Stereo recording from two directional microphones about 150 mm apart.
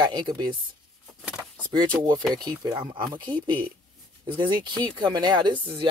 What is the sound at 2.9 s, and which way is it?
Speech, 30° right (ahead or behind).